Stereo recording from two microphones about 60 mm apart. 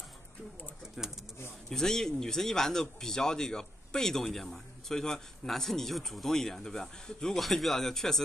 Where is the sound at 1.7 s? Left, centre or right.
Centre.